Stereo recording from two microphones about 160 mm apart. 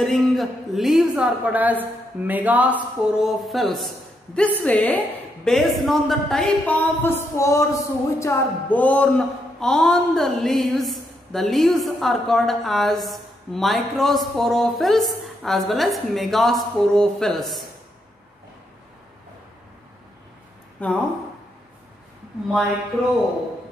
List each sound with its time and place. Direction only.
0.0 s a woman's voice: centre (ahead or behind)
20.8 s speech: 10° left (ahead or behind)